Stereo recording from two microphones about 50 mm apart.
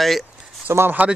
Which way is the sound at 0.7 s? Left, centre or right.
Right.